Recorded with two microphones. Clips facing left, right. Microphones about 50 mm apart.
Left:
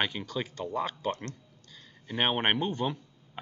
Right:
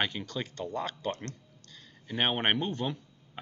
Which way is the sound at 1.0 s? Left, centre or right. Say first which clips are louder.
Left 2 dB; left.